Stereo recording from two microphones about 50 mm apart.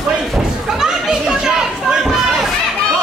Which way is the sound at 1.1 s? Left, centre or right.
Centre.